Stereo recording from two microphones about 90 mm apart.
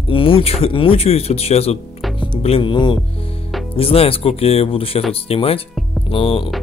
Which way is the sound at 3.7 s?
90° left.